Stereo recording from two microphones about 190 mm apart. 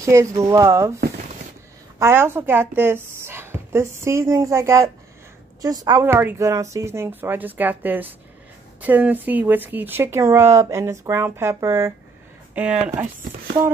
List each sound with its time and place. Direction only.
0.0 s speech: 15° right (ahead or behind)
2.0 s speech: 15° right (ahead or behind)